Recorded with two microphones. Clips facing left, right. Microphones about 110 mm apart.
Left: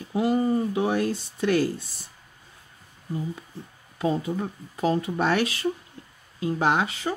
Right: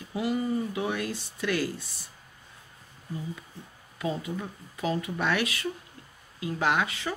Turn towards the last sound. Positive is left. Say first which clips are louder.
# left 3 dB
turn(degrees=30)  # may be behind; listen again after turning